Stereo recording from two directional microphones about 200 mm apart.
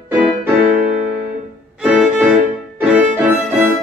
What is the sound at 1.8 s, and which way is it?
Music, 5° right (ahead or behind).